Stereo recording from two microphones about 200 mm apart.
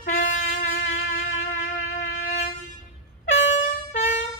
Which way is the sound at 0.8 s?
75° left (ahead or behind).